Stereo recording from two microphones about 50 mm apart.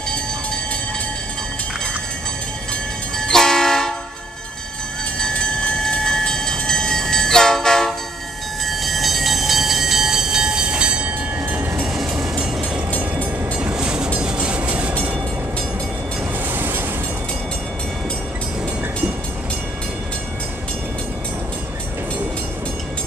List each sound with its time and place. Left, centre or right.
3.2 s train: centre
5.2 s train: centre; by 11.6 s right
13.2 s train: right
13.7 s train: centre
16.5 s train: right